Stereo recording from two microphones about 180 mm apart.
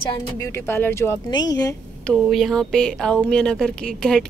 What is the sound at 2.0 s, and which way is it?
A woman's voice, centre (ahead or behind).